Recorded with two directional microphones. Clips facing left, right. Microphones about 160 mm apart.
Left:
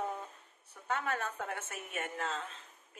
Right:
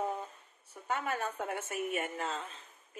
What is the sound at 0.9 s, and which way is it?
Speech, 10° right (ahead or behind).